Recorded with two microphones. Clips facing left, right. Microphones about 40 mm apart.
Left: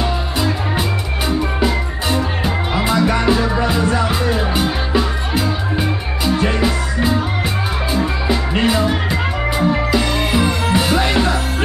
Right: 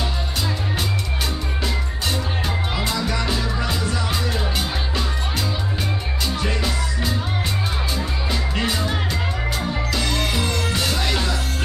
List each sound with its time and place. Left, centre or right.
0.0 s music: centre
8.6 s music: centre